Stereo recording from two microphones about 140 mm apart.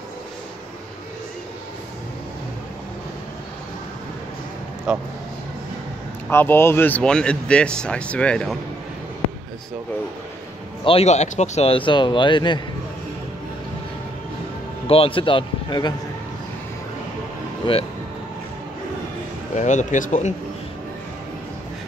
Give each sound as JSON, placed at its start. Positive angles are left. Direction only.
{"t": 4.9, "sound": "speech", "side_deg": -5}
{"t": 6.2, "sound": "speech", "side_deg": 15}
{"t": 10.8, "sound": "speech", "side_deg": 40}
{"t": 11.1, "sound": "a man's voice", "side_deg": 55}
{"t": 14.9, "sound": "a man's voice", "side_deg": 40}
{"t": 17.7, "sound": "a man's voice", "side_deg": 40}
{"t": 19.5, "sound": "speech", "side_deg": 60}